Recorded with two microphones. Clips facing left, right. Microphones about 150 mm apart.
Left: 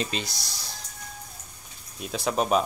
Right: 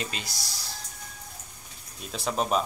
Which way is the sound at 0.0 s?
25° left (ahead or behind).